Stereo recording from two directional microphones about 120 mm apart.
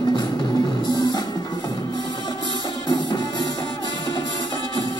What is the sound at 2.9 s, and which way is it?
Music, 40° left (ahead or behind).